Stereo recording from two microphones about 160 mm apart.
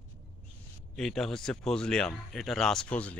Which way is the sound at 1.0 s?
Centre (ahead or behind).